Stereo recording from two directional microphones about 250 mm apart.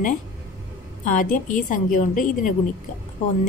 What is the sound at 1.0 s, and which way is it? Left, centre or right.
A woman's voice, left.